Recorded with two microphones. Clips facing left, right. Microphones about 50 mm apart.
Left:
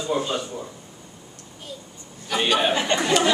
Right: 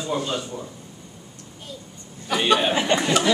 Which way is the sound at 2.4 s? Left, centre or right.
Centre.